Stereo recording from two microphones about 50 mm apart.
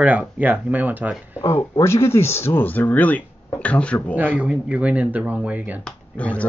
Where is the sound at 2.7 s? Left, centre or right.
Left.